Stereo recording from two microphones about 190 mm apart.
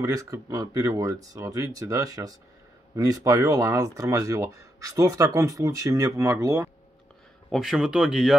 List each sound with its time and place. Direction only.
0.0 s speech: 15° right (ahead or behind)
7.4 s speech: centre (ahead or behind)